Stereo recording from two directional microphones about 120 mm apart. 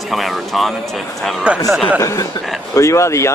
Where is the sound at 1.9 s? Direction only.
25° left (ahead or behind).